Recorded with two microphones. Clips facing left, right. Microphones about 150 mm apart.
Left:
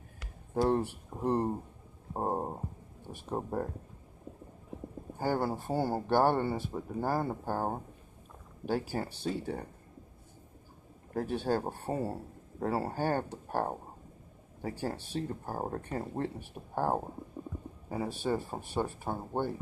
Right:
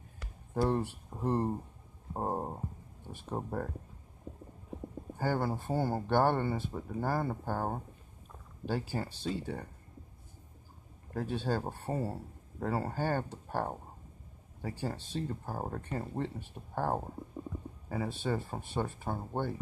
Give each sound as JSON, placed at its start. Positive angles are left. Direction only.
{"t": 0.7, "sound": "speech", "side_deg": 15}
{"t": 5.2, "sound": "speech", "side_deg": 10}
{"t": 11.1, "sound": "speech", "side_deg": 15}